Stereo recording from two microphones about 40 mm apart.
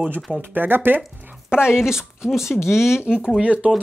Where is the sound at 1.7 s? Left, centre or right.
Centre.